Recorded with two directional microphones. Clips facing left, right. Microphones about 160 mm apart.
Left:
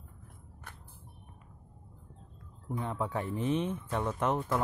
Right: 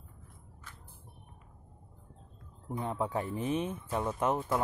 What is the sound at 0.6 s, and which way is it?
Music, 65° left (ahead or behind).